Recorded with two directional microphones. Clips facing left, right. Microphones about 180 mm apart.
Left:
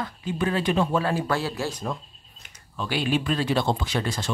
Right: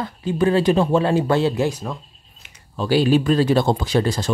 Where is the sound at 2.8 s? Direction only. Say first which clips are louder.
Right 9 dB; 35° right (ahead or behind).